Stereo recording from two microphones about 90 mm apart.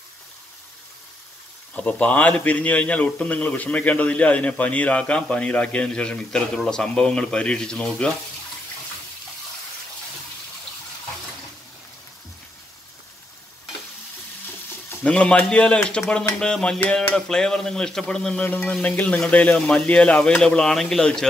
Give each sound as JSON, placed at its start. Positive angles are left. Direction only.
{"t": 1.8, "sound": "speech", "side_deg": 15}
{"t": 15.0, "sound": "speech", "side_deg": 15}